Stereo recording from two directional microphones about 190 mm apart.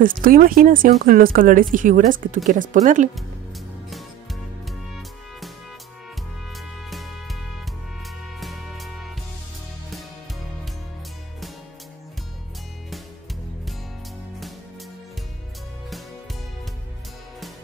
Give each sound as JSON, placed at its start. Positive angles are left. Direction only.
{"t": 0.0, "sound": "speech", "side_deg": -45}
{"t": 3.9, "sound": "music", "side_deg": 0}
{"t": 6.9, "sound": "music", "side_deg": 0}
{"t": 8.4, "sound": "music", "side_deg": 0}